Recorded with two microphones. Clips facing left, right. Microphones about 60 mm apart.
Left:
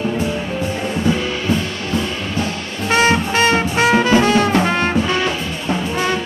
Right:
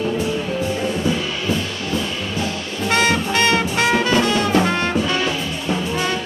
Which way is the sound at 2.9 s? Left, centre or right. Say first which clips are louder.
Left 3 dB; left.